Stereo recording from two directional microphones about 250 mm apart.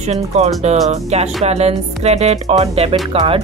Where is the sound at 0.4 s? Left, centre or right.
Right.